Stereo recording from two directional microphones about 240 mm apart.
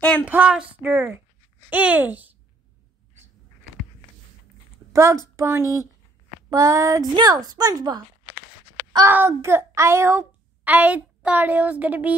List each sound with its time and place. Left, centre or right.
0.0 s a sound: centre
0.3 s speech: centre
4.9 s a woman's voice: centre